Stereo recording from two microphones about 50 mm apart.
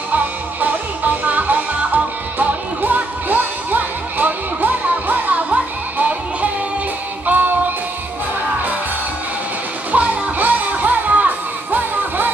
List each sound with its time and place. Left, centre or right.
0.1 s music: right
9.9 s music: right